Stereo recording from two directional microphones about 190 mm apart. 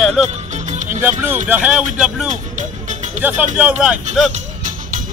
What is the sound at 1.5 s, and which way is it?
Speech, 5° right (ahead or behind).